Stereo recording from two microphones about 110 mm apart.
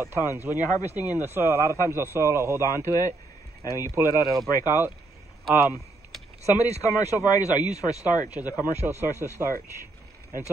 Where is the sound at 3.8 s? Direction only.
30° right (ahead or behind).